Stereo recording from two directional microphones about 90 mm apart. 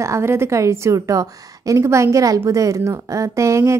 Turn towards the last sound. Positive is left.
turn(degrees=-35)  # may be behind; listen again after turning